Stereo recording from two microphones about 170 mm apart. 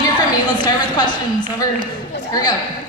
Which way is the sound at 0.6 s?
25° left (ahead or behind).